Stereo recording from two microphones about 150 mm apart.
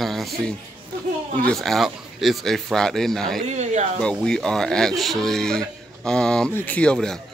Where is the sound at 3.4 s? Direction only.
50° right (ahead or behind).